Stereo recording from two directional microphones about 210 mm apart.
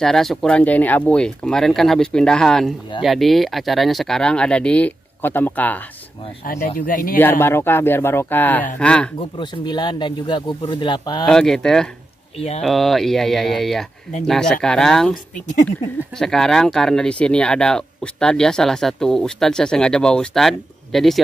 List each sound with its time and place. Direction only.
0.0 s speech: centre (ahead or behind)
6.4 s speech: 40° left (ahead or behind)
7.2 s speech: 10° left (ahead or behind)
9.4 s speech: 20° left (ahead or behind)
11.2 s speech: centre (ahead or behind)
12.4 s speech: 30° left (ahead or behind)
12.6 s speech: centre (ahead or behind)